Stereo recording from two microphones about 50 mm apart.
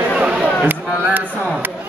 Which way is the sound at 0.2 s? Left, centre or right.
Right.